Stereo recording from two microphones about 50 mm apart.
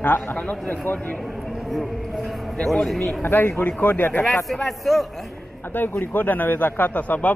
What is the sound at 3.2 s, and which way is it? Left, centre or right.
A man's voice, left.